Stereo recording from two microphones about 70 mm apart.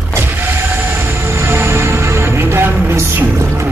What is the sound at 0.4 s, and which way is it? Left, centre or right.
Music, right.